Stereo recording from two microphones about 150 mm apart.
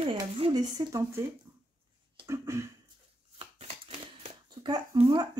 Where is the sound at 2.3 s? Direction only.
20° right (ahead or behind).